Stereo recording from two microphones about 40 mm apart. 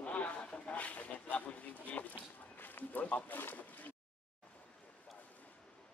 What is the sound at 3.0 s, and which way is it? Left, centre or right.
Speech, left.